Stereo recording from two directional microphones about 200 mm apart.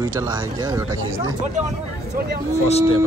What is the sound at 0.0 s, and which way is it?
Speech, 15° right (ahead or behind).